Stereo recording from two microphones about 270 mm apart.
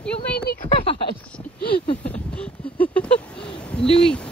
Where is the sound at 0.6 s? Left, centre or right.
Left.